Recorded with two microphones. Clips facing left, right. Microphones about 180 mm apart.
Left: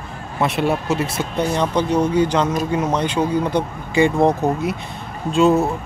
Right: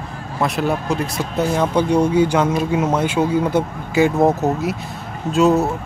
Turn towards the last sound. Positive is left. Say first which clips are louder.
# even
turn(degrees=0)  # may be behind; listen again after turning